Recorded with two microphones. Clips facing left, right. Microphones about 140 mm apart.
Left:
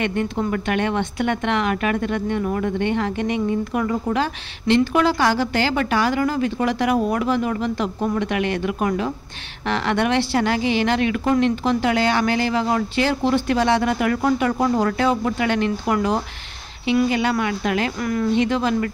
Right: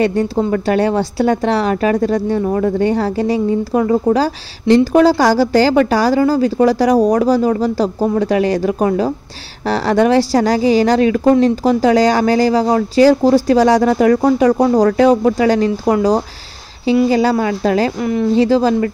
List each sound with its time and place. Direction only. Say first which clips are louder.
0.0 s a woman's voice: right 7 dB; 35° right (ahead or behind)